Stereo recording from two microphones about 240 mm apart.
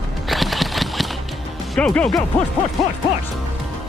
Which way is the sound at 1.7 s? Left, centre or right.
Centre.